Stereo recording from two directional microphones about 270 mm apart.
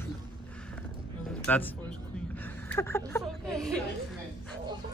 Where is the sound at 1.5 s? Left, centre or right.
Centre.